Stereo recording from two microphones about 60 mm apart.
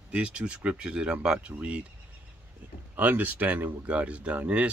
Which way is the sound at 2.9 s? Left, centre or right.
Right.